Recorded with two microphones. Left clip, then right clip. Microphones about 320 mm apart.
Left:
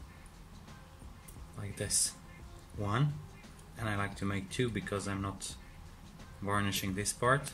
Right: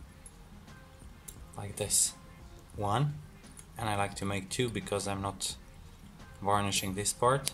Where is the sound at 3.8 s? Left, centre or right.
Centre.